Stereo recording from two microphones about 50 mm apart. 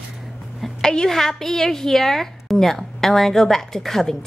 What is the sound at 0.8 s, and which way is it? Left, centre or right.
A woman's voice, centre.